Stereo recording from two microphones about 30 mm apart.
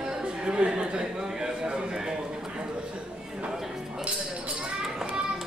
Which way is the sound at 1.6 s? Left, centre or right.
Right.